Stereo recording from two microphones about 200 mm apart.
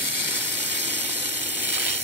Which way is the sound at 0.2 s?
60° right (ahead or behind).